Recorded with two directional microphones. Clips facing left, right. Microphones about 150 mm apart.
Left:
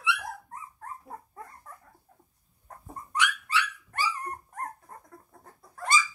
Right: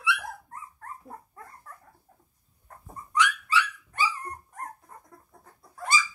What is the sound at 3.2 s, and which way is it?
Dog, 60° left (ahead or behind).